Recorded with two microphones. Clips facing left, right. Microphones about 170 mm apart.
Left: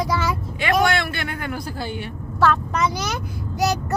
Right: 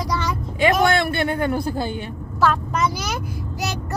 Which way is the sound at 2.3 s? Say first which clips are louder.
Even; centre (ahead or behind).